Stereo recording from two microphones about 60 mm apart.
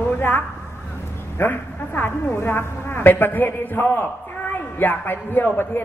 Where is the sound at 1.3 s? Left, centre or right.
Left.